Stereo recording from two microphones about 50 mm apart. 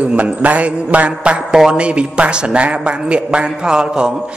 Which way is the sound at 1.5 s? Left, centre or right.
Centre.